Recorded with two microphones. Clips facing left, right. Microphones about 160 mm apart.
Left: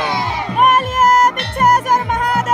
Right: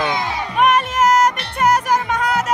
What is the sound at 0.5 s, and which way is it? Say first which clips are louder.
Music: left 2 dB; 50° left (ahead or behind).